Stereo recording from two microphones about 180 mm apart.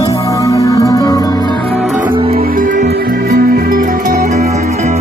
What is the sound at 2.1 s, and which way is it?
Music, 30° right (ahead or behind).